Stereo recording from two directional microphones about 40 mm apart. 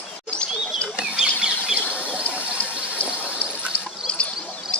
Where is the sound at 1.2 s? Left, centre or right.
Right.